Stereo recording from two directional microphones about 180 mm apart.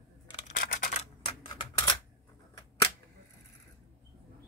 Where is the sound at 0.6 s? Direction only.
50° left (ahead or behind).